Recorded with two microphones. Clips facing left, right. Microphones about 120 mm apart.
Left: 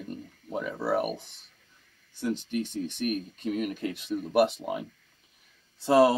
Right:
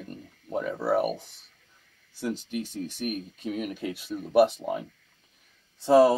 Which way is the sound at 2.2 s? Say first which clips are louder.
Left 1 dB; 5° right (ahead or behind).